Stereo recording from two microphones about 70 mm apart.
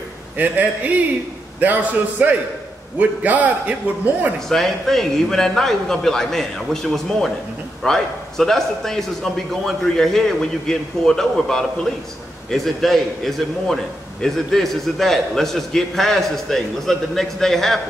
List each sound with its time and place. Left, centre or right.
0.4 s a man's voice: right
4.5 s a man's voice: centre